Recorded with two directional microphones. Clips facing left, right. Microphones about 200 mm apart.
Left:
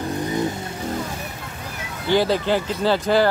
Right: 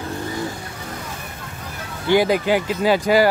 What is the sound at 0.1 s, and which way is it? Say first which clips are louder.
Vehicle: left 4 dB; 20° left (ahead or behind).